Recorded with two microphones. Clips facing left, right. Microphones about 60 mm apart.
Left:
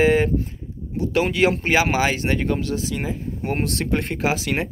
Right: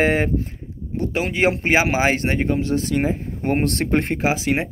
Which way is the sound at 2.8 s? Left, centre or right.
Right.